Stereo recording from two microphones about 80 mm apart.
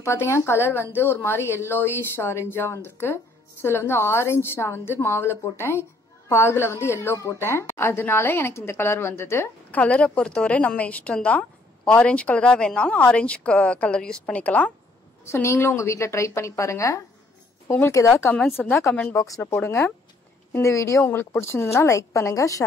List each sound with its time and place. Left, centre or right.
0.0 s a woman's voice: left
9.7 s a woman's voice: centre
15.2 s a woman's voice: left
18.6 s speech: centre
19.1 s speech: left
19.4 s speech: left
20.5 s a woman's voice: left